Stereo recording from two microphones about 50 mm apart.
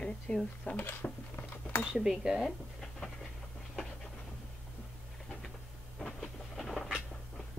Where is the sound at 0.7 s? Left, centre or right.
Left.